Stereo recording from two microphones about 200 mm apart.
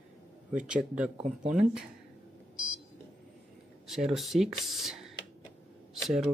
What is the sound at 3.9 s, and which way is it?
Speech, centre (ahead or behind).